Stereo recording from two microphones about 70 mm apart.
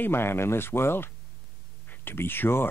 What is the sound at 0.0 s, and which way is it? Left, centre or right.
Speech, left.